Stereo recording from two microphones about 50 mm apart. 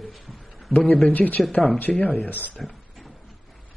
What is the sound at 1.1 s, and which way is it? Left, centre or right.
Speech, left.